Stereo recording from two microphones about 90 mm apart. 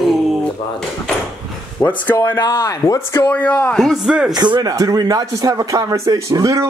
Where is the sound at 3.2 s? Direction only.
15° left (ahead or behind).